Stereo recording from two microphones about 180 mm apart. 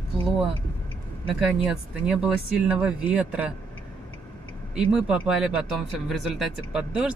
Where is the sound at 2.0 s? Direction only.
5° right (ahead or behind).